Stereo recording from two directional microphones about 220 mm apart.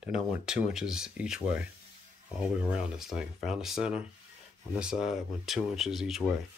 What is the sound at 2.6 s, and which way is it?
Speech, 5° right (ahead or behind).